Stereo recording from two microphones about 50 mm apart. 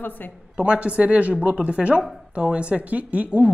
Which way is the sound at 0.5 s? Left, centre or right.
Right.